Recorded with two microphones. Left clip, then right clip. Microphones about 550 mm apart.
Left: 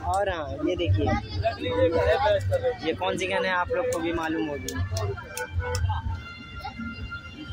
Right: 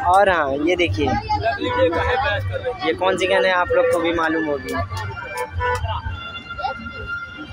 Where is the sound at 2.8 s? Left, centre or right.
Left.